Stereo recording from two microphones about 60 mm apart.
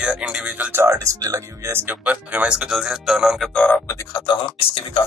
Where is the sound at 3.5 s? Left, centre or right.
Left.